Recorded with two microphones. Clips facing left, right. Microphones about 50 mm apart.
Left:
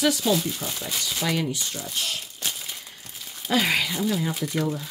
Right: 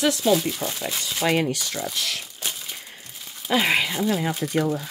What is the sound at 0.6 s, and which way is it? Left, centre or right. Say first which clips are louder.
Speech: right 2 dB; right.